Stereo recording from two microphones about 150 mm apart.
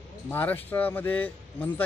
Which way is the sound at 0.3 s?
15° left (ahead or behind).